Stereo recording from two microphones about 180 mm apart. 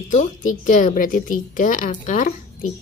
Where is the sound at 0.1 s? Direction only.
40° left (ahead or behind).